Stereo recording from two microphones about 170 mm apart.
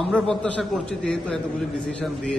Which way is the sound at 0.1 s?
5° left (ahead or behind).